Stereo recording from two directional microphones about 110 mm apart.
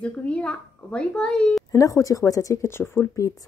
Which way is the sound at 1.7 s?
30° left (ahead or behind).